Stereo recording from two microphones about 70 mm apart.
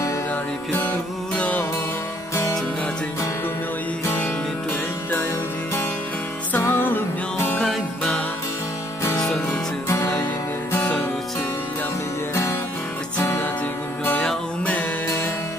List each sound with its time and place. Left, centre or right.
1.3 s music: centre
2.3 s music: left
4.0 s music: left
6.5 s music: left
9.1 s music: centre
9.8 s music: left
13.2 s music: left